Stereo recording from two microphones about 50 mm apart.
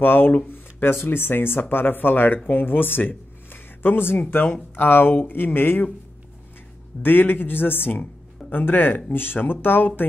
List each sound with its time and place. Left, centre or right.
0.0 s speech: left
0.5 s a sound: left
1.0 s speech: left
7.0 s speech: left